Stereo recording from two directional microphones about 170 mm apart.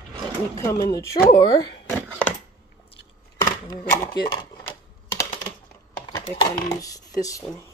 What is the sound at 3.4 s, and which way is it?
Speech, 20° left (ahead or behind).